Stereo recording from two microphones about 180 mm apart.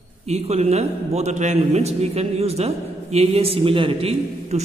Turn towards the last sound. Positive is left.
turn(degrees=-35)  # may be behind; listen again after turning